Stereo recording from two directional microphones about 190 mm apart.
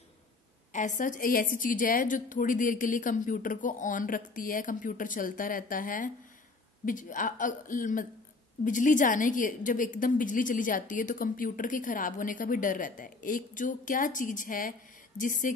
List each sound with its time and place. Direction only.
0.7 s a woman's voice: 40° left (ahead or behind)